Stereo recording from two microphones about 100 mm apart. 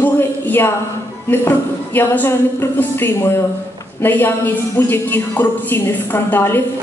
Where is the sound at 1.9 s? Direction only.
20° left (ahead or behind).